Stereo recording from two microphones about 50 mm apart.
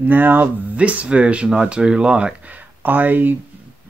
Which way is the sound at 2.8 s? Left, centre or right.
Right.